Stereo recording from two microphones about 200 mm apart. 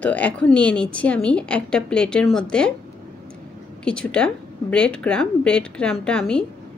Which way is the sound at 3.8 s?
5° left (ahead or behind).